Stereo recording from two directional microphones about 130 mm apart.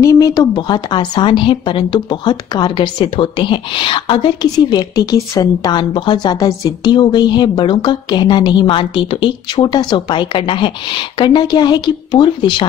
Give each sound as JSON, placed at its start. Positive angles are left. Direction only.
{"t": 0.0, "sound": "a woman's voice", "side_deg": 25}